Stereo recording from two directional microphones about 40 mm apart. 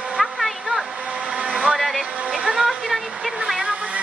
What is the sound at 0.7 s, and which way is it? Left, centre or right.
Blender, right.